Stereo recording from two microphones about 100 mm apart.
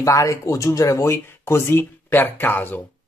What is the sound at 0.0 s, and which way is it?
Speech, 30° left (ahead or behind).